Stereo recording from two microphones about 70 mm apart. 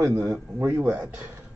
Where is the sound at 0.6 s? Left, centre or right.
Right.